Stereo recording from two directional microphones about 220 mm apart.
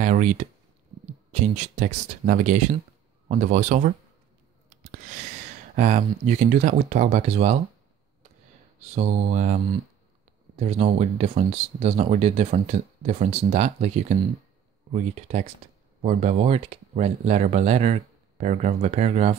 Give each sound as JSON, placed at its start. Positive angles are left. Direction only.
{"t": 0.0, "sound": "speech", "side_deg": -35}
{"t": 5.8, "sound": "speech", "side_deg": -35}
{"t": 8.9, "sound": "speech", "side_deg": -30}